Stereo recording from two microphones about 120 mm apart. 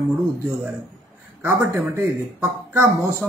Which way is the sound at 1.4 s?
15° right (ahead or behind).